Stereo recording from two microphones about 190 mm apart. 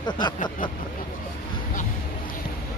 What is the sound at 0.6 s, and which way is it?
Speech, 45° left (ahead or behind).